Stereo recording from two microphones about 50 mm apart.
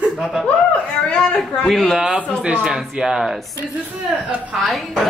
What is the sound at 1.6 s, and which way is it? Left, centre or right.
Speech, centre.